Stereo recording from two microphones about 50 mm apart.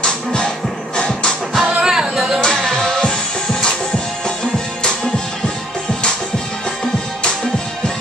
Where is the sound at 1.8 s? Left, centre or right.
Centre.